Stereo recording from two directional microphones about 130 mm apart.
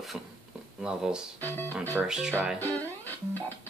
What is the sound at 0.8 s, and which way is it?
Speech, 5° right (ahead or behind).